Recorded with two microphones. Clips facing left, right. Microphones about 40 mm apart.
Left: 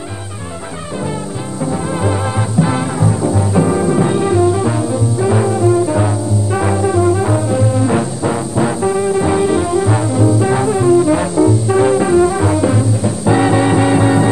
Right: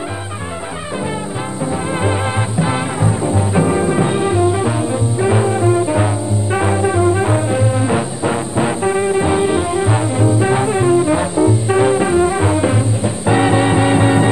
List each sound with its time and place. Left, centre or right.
2.6 s music: right